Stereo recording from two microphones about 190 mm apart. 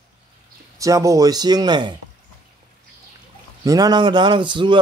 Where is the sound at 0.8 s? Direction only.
15° right (ahead or behind).